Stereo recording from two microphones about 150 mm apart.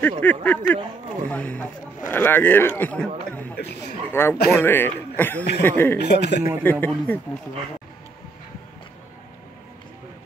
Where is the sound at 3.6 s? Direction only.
90° left.